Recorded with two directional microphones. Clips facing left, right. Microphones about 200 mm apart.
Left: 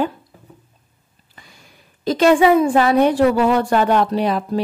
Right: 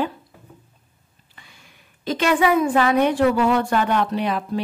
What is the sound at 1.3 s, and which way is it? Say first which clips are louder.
A woman's voice: left 4 dB; 40° left (ahead or behind).